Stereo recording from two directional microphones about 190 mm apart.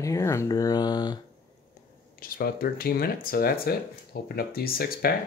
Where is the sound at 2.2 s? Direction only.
50° left (ahead or behind).